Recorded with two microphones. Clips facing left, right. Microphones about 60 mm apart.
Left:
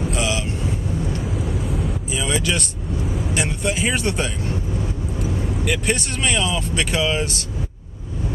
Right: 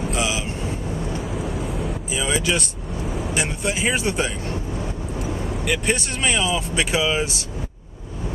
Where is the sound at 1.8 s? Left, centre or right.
Centre.